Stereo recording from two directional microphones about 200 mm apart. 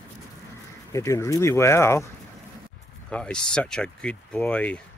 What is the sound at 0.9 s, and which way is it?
Speech, 15° left (ahead or behind).